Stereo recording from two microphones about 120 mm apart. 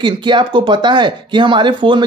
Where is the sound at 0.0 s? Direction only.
40° right (ahead or behind).